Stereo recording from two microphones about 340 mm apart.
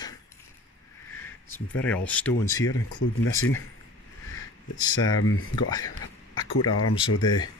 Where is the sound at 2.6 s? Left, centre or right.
Left.